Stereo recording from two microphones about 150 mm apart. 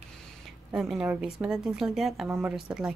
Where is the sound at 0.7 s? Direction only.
5° right (ahead or behind).